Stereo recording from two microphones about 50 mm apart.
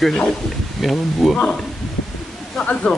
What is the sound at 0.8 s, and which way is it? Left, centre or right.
Speech, centre.